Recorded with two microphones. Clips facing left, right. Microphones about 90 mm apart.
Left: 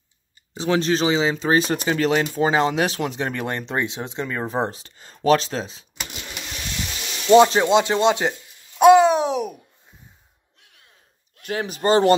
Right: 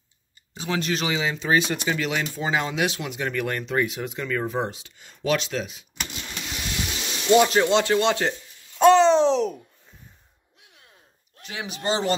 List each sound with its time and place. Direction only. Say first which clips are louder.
0.6 s speech: left 6 dB; 35° left (ahead or behind)
7.2 s speech: left 5 dB; 25° left (ahead or behind)
7.6 s a sound: left 3 dB; 15° left (ahead or behind)
11.4 s speech: left 7 dB; 45° left (ahead or behind)